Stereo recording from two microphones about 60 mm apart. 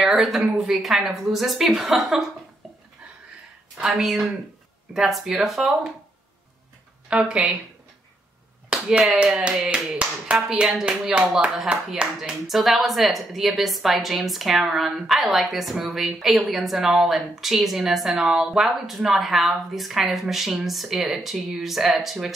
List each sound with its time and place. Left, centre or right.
0.0 s a woman's voice: centre
4.0 s a woman's voice: centre
7.1 s speech: centre
9.1 s a woman's voice: centre